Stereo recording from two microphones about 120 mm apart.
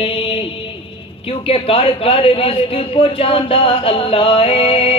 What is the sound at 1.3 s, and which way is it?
A man's voice, 50° left (ahead or behind).